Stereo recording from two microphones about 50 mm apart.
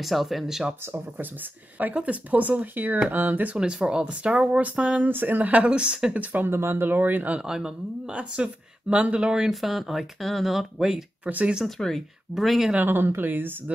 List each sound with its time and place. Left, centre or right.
0.0 s speech: centre
1.8 s speech: right
3.5 s speech: centre
5.0 s speech: right
5.7 s speech: centre
6.4 s speech: right
7.3 s speech: centre
8.1 s speech: right
9.5 s speech: centre
11.2 s speech: right
11.8 s speech: centre
12.4 s speech: centre
12.7 s speech: right